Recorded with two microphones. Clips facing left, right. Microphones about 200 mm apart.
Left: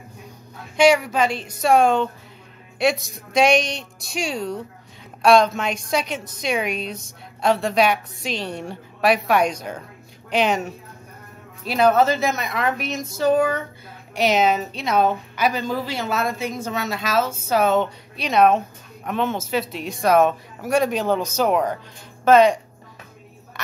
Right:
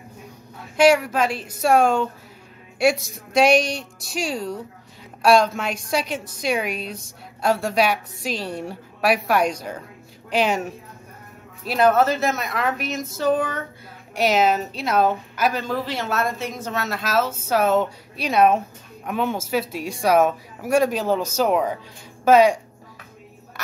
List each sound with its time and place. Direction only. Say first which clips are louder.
0.7 s a woman's voice: even; 5° right (ahead or behind)